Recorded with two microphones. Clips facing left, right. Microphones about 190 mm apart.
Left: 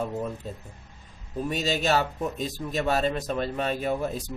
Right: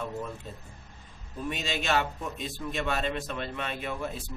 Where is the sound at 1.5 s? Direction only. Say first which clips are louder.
Left 4 dB; 40° left (ahead or behind).